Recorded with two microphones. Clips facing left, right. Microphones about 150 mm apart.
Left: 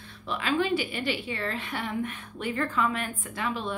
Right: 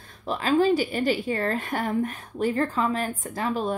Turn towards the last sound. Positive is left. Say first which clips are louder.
# right 5 dB
turn(degrees=-40)  # may be behind; listen again after turning